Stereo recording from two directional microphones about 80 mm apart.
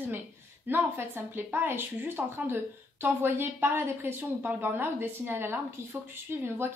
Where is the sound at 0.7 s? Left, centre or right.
Right.